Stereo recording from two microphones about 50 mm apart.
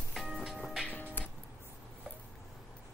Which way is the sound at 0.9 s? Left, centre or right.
Left.